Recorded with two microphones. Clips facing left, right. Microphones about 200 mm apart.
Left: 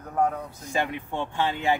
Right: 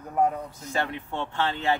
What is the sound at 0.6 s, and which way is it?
Speech, 15° left (ahead or behind).